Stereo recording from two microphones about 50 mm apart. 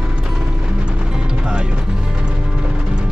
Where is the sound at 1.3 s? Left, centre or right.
Centre.